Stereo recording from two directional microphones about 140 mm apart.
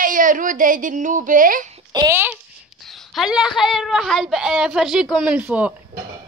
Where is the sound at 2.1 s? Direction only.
15° right (ahead or behind).